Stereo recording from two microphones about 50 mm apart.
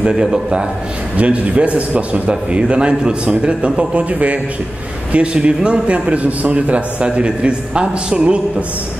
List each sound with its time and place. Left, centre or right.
0.0 s a man's voice: centre
1.1 s a man's voice: right